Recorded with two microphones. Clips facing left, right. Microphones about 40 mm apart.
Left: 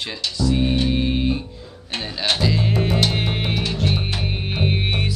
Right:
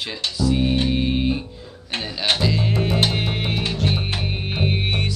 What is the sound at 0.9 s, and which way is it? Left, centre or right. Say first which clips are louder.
Music: even; centre.